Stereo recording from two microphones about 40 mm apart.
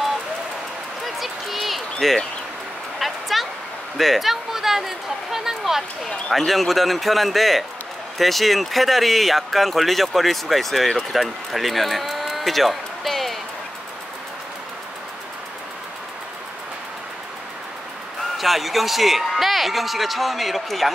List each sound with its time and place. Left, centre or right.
1.0 s a sound: centre
3.9 s speech: centre
6.3 s speech: centre
18.4 s speech: centre